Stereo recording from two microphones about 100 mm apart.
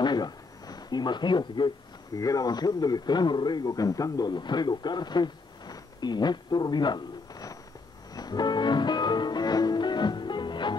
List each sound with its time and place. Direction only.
0.0 s a sound: 45° left (ahead or behind)
2.1 s a man's voice: 35° left (ahead or behind)
8.1 s music: 40° left (ahead or behind)